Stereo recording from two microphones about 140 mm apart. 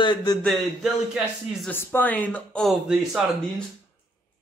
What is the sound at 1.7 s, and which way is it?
Speech, 15° left (ahead or behind).